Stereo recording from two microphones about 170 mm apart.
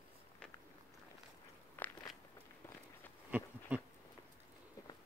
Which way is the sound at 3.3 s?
10° right (ahead or behind).